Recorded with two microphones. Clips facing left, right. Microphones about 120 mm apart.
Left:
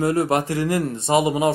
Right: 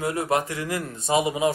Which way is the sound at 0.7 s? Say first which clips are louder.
Left 3 dB; 60° left (ahead or behind).